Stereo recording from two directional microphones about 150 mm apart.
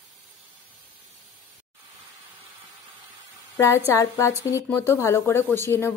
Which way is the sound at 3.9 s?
20° left (ahead or behind).